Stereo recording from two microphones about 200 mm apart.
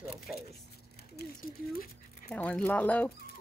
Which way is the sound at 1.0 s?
50° left (ahead or behind).